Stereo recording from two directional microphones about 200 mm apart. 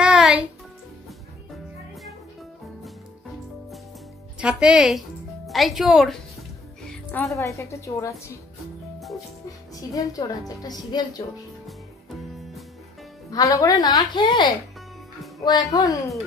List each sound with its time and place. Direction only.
0.0 s music: 5° right (ahead or behind)
4.4 s a woman's voice: 5° right (ahead or behind); by 8.2 s 15° left (ahead or behind)
9.9 s a child's voice: 15° left (ahead or behind)
13.3 s a woman's voice: 15° left (ahead or behind)